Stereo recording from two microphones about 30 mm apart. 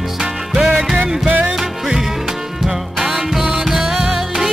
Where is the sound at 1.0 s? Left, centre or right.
Right.